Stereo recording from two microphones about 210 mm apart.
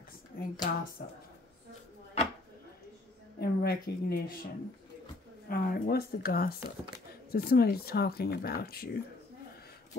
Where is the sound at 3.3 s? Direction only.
50° left (ahead or behind).